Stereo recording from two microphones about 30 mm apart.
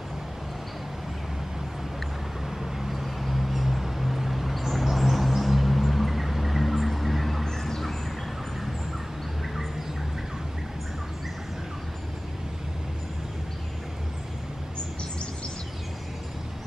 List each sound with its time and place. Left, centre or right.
2.6 s vehicle: centre
7.4 s bird: centre